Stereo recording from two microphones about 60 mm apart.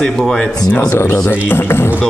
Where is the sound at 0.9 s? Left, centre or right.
Left.